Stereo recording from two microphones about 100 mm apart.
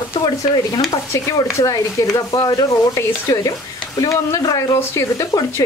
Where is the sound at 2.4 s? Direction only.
45° left (ahead or behind).